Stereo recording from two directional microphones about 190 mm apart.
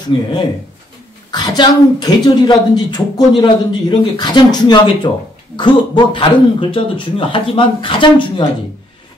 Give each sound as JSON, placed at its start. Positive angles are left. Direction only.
{"t": 0.1, "sound": "a woman's voice", "side_deg": 30}
{"t": 1.3, "sound": "a woman's voice", "side_deg": 20}